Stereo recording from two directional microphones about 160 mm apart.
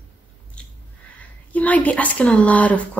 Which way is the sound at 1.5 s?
10° left (ahead or behind).